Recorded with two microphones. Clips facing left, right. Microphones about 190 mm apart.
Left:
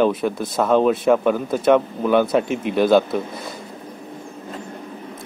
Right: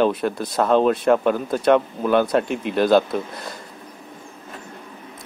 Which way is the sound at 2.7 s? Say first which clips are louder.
Left 2 dB; 55° left (ahead or behind).